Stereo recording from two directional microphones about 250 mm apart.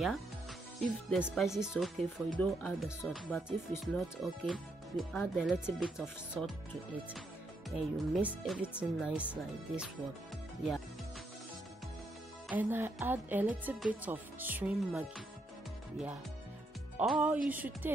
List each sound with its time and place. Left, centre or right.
1.1 s speech: centre
7.7 s speech: centre
12.4 s speech: centre
16.9 s speech: centre